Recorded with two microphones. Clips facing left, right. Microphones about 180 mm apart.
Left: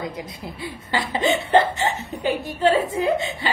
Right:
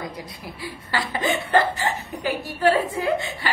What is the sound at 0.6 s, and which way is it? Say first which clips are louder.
Speech: left 2 dB; 20° left (ahead or behind).